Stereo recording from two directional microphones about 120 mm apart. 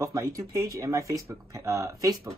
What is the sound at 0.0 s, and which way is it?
Speech, 30° right (ahead or behind).